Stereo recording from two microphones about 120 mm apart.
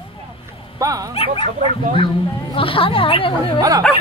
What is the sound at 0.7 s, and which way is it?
Speech, 30° right (ahead or behind).